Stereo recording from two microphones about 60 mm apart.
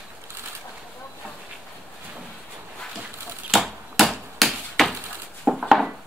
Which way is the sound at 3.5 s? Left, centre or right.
Centre.